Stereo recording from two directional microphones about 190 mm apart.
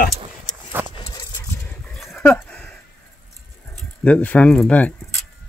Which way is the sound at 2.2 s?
10° left (ahead or behind).